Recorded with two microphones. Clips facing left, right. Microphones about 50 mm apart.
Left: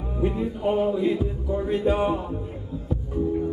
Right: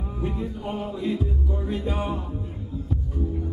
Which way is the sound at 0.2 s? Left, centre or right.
Centre.